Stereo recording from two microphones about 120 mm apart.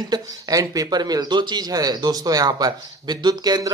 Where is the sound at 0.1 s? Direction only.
30° right (ahead or behind).